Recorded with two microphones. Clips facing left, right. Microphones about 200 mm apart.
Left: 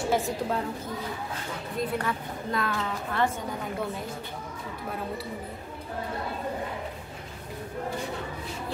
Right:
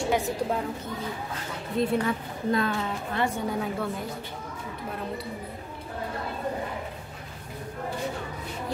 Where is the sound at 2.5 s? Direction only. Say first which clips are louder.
Right 4 dB; 25° right (ahead or behind).